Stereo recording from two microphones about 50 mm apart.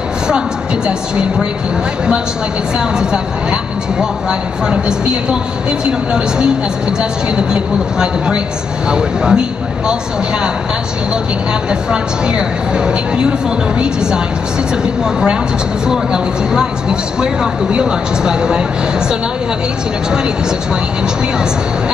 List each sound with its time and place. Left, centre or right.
4.0 s a woman's voice: centre
11.9 s a woman's voice: centre
15.9 s a woman's voice: centre
17.7 s a woman's voice: centre